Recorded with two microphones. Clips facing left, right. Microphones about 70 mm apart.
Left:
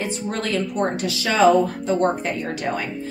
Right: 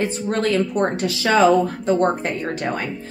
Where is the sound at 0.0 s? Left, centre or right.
Right.